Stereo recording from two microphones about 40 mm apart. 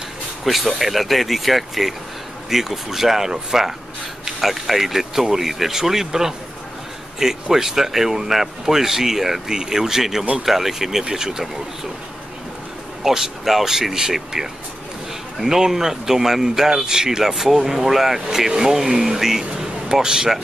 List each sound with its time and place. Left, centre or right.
0.5 s speech: centre
13.0 s speech: centre